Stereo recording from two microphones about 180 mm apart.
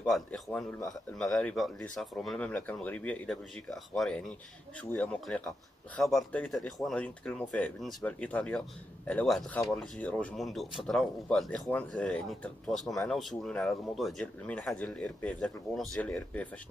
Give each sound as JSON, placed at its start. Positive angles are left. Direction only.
{"t": 0.0, "sound": "speech", "side_deg": 5}